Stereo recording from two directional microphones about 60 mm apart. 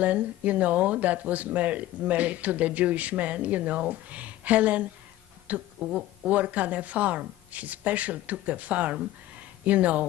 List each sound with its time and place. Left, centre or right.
0.0 s speech: right